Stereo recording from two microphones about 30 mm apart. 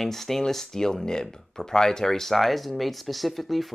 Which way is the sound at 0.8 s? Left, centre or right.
Left.